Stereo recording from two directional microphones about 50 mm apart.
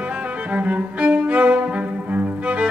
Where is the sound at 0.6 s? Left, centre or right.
Right.